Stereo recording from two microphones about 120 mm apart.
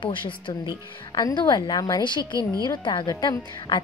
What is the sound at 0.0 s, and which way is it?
A woman's voice, 45° left (ahead or behind).